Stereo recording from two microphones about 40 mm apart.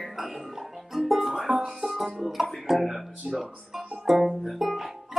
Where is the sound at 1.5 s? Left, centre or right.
Centre.